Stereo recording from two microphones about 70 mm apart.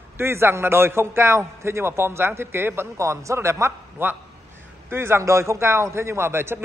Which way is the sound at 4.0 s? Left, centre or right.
Right.